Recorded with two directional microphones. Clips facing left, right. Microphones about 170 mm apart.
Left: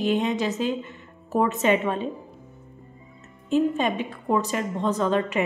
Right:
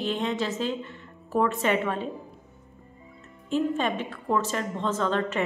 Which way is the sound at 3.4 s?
15° left (ahead or behind).